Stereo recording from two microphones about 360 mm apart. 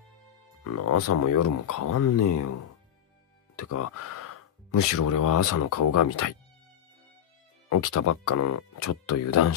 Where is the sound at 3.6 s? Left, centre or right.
Left.